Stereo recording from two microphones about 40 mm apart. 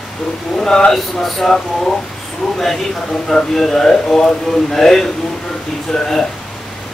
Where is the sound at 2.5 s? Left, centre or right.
Centre.